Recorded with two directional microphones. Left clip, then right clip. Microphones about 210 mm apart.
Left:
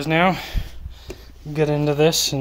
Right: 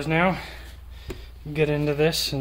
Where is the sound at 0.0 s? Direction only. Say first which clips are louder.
Left 4 dB; 45° left (ahead or behind).